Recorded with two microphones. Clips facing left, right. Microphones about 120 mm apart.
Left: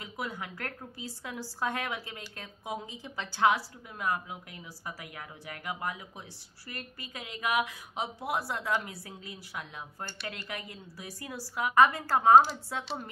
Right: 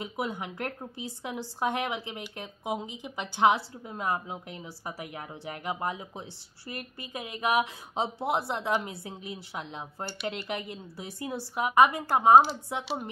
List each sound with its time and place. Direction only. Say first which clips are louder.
0.0 s a woman's voice: right 5 dB; 20° right (ahead or behind)